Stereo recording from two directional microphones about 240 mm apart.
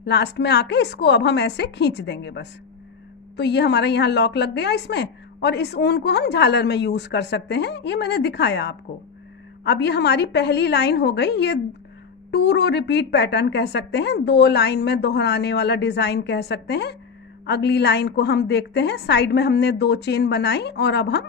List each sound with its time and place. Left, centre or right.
0.0 s a woman's voice: left